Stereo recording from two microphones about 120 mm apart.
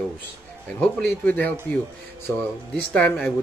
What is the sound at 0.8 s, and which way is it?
Speech, 10° left (ahead or behind).